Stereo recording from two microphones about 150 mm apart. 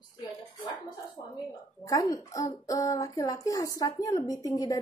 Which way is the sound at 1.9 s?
20° left (ahead or behind).